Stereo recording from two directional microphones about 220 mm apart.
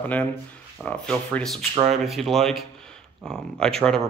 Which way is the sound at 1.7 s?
30° right (ahead or behind).